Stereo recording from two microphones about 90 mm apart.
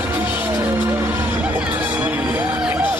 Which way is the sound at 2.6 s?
15° right (ahead or behind).